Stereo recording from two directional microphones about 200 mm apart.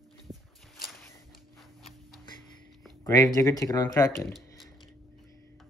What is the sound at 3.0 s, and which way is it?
Speech, 20° left (ahead or behind).